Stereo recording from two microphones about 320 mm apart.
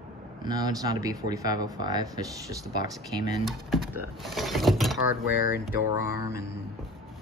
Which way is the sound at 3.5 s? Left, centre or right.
Centre.